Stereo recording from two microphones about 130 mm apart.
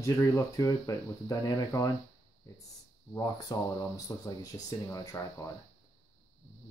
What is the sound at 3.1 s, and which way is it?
Speech, 30° left (ahead or behind).